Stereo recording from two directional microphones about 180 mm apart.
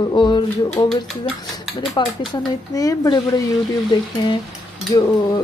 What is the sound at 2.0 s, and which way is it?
Speech, 25° left (ahead or behind).